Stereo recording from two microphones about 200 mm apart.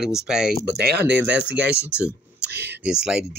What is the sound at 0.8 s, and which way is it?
Speech, 55° right (ahead or behind).